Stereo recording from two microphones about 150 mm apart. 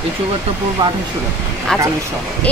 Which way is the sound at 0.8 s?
30° right (ahead or behind).